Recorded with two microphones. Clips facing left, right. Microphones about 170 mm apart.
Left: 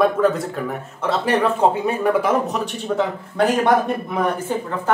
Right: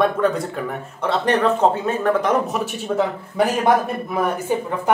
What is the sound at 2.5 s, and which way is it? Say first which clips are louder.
A man's voice: even; 5° right (ahead or behind).